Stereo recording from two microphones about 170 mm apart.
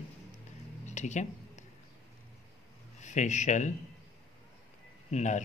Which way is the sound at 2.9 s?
45° left (ahead or behind).